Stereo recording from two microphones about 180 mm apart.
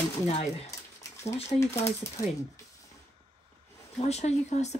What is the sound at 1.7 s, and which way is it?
Speech, 15° left (ahead or behind).